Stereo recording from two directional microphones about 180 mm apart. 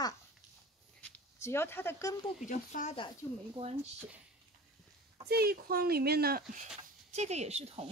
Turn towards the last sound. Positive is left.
turn(degrees=-35)  # may be behind; listen again after turning